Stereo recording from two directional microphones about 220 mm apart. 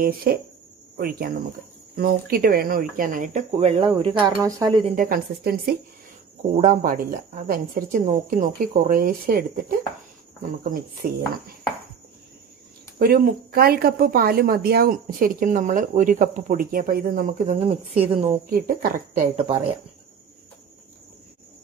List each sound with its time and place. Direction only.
0.0 s speech: 40° right (ahead or behind); by 4.8 s 15° right (ahead or behind)
4.9 s speech: 40° right (ahead or behind)
6.5 s speech: 35° right (ahead or behind)
11.0 s speech: 45° right (ahead or behind)
13.0 s speech: 45° right (ahead or behind)
17.9 s a woman's voice: 25° right (ahead or behind)
18.5 s speech: 40° right (ahead or behind)
19.3 s a woman's voice: 25° right (ahead or behind)